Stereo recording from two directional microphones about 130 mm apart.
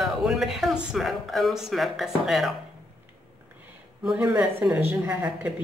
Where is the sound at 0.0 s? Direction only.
Centre (ahead or behind).